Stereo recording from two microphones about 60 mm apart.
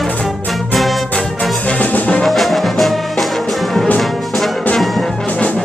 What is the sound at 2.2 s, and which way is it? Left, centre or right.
Music, centre.